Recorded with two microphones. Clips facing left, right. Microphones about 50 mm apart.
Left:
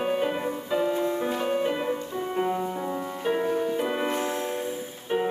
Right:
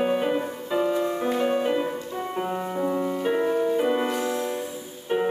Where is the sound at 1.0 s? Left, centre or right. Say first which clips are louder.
Right 2 dB; centre.